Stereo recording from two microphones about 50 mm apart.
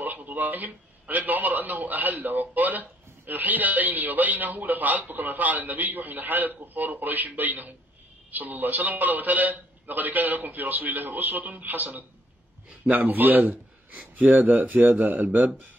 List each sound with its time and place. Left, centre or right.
0.0 s a man's voice: right